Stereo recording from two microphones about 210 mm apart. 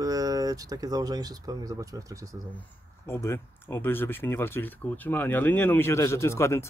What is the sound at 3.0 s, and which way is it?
Speech, 10° left (ahead or behind).